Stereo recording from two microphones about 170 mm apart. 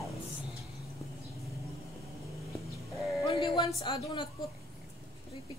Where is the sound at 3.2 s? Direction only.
30° left (ahead or behind).